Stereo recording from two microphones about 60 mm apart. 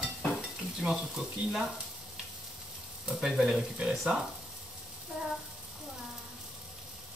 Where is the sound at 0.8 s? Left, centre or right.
Centre.